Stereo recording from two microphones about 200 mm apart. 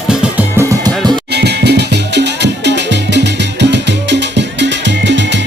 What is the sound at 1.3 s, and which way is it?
Music, 55° right (ahead or behind).